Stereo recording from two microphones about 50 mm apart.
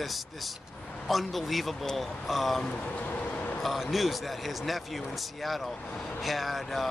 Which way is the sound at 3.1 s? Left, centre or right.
Left.